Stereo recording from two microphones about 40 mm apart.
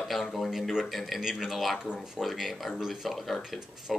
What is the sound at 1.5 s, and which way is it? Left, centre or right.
Speech, centre.